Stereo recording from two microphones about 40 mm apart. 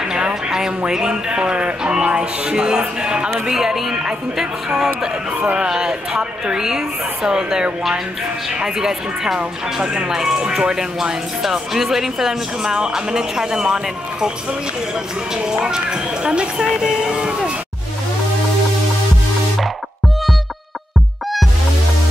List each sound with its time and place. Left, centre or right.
0.1 s speech: centre
3.4 s speech: centre
5.4 s speech: right
5.7 s speech: centre
15.3 s speech: right
16.6 s a sound: centre